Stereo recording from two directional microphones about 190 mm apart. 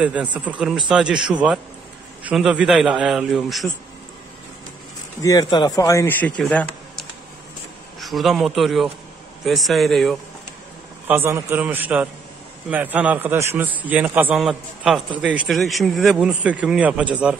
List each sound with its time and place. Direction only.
0.0 s a man's voice: 5° right (ahead or behind)
5.2 s a man's voice: 20° left (ahead or behind); by 10.1 s centre (ahead or behind)
11.1 s a man's voice: 10° right (ahead or behind)